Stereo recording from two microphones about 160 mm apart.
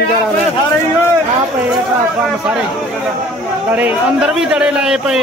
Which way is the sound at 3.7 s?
5° right (ahead or behind).